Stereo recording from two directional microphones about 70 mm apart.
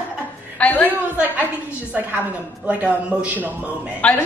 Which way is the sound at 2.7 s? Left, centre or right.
Right.